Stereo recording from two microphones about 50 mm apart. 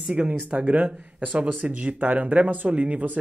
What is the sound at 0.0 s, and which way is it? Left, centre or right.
Speech, right.